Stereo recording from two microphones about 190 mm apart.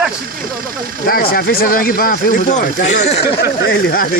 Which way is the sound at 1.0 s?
50° left (ahead or behind).